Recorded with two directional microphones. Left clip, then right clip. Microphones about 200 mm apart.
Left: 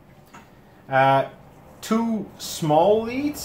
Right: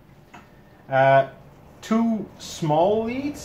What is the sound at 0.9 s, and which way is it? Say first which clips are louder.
Speech: right 1 dB; 25° left (ahead or behind).